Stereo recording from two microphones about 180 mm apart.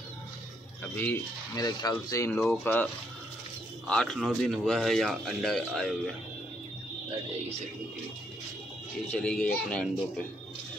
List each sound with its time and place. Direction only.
0.9 s speech: 10° left (ahead or behind)
3.9 s a man's voice: 5° left (ahead or behind)
9.1 s a man's voice: 5° left (ahead or behind)